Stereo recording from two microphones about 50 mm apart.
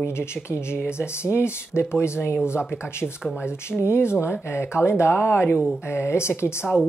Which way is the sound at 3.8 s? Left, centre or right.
Left.